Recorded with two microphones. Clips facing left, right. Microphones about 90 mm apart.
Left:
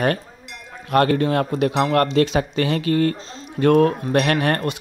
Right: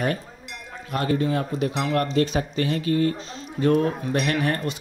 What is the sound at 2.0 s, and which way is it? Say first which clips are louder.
A man's voice: left 3 dB; 85° left.